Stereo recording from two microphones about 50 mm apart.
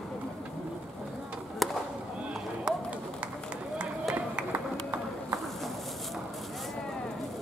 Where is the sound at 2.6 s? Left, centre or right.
Right.